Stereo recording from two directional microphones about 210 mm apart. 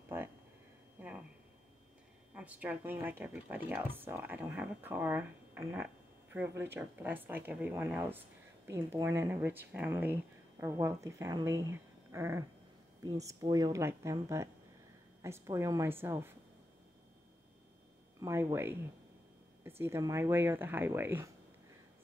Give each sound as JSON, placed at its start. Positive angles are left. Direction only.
{"t": 0.1, "sound": "a sound", "side_deg": -10}
{"t": 2.3, "sound": "speech", "side_deg": -5}
{"t": 12.1, "sound": "a sound", "side_deg": -15}
{"t": 13.0, "sound": "speech", "side_deg": -15}
{"t": 18.2, "sound": "speech", "side_deg": -10}
{"t": 19.8, "sound": "speech", "side_deg": -15}